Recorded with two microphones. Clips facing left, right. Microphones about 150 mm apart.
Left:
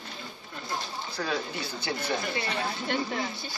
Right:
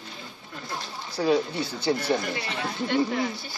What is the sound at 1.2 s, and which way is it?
Speech, 30° right (ahead or behind).